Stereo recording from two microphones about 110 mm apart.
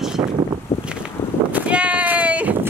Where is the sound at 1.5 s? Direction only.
10° right (ahead or behind).